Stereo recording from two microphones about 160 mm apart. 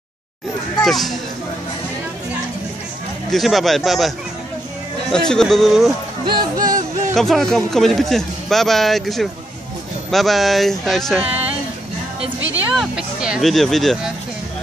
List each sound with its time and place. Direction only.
0.8 s a man's voice: centre (ahead or behind)
3.3 s a man's voice: centre (ahead or behind)
5.1 s a man's voice: 5° left (ahead or behind)
6.2 s music: 25° right (ahead or behind)
7.2 s a man's voice: centre (ahead or behind)
12.7 s a man's voice: 5° right (ahead or behind)